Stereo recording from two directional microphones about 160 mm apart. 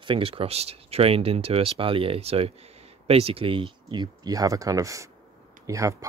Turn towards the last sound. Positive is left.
turn(degrees=-20)  # may be behind; listen again after turning